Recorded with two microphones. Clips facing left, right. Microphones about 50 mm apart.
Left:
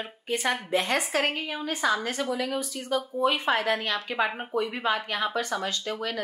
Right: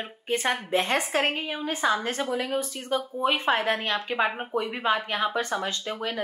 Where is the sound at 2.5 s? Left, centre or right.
Right.